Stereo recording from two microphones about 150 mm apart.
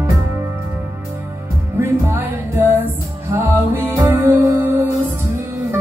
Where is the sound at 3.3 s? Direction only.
15° right (ahead or behind).